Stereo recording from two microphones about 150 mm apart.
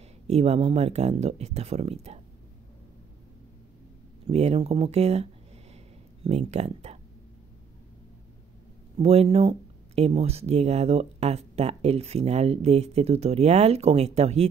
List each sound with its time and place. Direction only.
0.3 s speech: 45° right (ahead or behind)
4.3 s speech: 45° right (ahead or behind)
8.9 s speech: 45° right (ahead or behind)